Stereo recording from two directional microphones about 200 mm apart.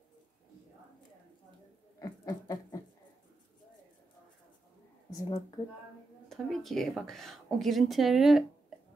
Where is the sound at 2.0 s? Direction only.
20° left (ahead or behind).